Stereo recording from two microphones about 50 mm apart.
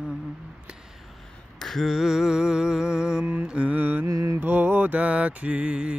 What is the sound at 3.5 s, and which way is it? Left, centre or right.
Mantra, right.